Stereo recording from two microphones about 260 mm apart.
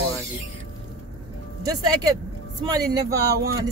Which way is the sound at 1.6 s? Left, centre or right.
Centre.